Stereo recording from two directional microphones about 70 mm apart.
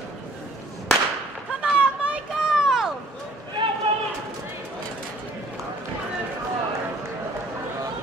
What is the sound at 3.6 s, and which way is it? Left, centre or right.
Run, right.